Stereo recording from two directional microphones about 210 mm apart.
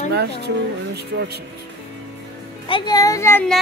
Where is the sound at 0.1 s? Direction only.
50° right (ahead or behind).